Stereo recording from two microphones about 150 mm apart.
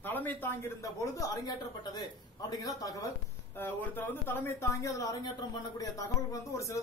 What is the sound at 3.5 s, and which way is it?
Speech, 15° left (ahead or behind).